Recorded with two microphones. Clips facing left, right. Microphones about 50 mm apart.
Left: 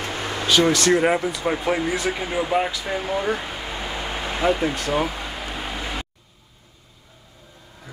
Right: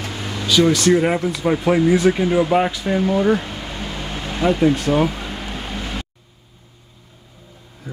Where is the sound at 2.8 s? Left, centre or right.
Centre.